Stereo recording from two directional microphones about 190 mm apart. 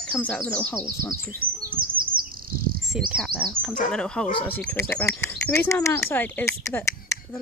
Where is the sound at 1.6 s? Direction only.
50° right (ahead or behind).